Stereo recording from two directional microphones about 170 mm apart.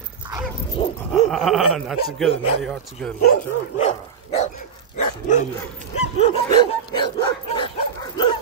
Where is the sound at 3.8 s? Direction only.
45° left (ahead or behind).